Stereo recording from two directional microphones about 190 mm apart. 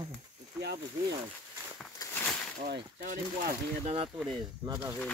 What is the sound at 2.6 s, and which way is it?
Speech, 45° right (ahead or behind).